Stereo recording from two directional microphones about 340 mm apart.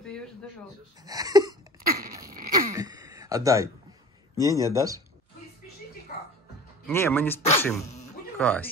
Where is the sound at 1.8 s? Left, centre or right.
Right.